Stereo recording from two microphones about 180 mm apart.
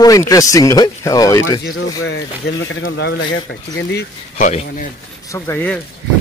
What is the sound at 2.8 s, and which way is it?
Speech, 70° left (ahead or behind).